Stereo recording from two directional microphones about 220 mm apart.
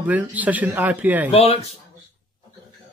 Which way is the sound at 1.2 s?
30° left (ahead or behind).